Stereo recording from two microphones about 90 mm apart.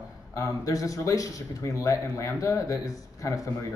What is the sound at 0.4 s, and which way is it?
Speech, 40° left (ahead or behind).